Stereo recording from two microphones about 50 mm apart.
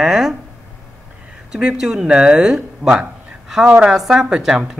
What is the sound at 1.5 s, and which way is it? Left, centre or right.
Speech, centre.